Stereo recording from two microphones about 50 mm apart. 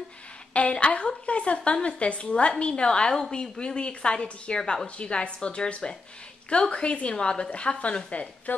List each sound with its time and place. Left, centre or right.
0.5 s a woman's voice: left